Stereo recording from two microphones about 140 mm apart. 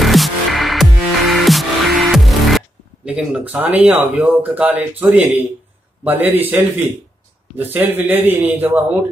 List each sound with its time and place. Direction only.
0.0 s music: centre (ahead or behind)
3.1 s a man's voice: 10° right (ahead or behind)